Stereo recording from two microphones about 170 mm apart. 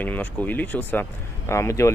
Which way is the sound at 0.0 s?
10° left (ahead or behind).